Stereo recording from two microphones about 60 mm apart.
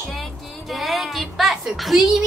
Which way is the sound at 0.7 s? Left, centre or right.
Centre.